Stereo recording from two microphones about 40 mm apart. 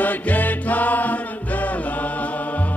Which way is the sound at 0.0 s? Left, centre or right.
Left.